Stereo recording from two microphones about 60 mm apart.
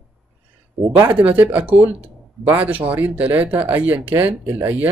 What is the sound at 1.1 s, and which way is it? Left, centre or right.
Speech, right.